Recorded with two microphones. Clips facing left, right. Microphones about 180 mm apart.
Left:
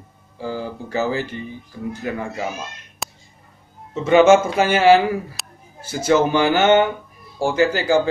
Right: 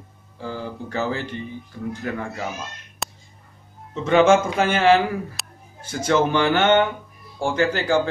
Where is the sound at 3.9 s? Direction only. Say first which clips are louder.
Left 3 dB; 5° left (ahead or behind).